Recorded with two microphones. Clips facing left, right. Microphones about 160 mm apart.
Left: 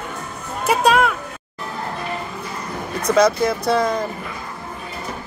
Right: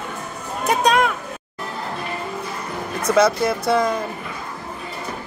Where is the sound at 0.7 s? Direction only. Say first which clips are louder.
Left 2 dB; 5° left (ahead or behind).